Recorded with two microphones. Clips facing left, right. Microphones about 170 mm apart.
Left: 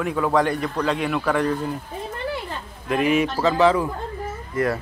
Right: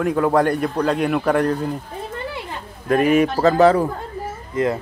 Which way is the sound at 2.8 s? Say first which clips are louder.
Right 4 dB; 45° right (ahead or behind).